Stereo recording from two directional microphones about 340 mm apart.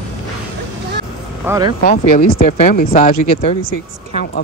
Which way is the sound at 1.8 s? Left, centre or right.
Centre.